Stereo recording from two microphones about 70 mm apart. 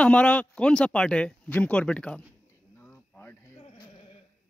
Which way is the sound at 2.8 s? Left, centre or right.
Left.